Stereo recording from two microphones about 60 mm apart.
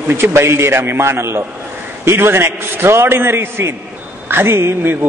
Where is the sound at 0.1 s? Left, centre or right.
Right.